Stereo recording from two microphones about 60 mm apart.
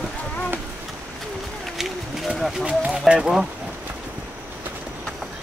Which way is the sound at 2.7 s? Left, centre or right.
Centre.